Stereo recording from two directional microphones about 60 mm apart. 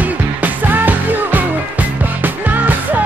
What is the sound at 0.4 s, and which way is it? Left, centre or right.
Music, right.